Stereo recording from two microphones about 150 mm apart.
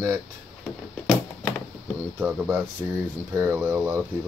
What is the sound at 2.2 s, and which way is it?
Speech, 10° right (ahead or behind).